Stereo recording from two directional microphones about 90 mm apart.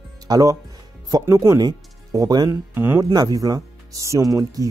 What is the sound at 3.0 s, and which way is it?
Speech, 45° right (ahead or behind).